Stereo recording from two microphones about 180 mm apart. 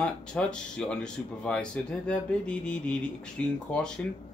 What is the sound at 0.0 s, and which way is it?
Speech, 5° left (ahead or behind).